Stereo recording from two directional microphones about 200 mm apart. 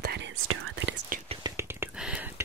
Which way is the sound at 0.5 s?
65° right (ahead or behind).